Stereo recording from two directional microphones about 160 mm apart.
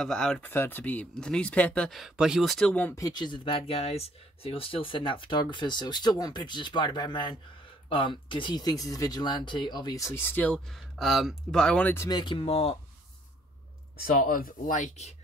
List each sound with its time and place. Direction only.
0.0 s speech: 5° left (ahead or behind)
3.0 s speech: 25° left (ahead or behind)
12.2 s speech: 30° left (ahead or behind)
13.9 s speech: 65° left (ahead or behind); by 15.1 s 45° left (ahead or behind)